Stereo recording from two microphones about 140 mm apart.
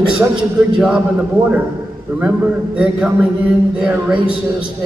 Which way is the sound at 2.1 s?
15° right (ahead or behind).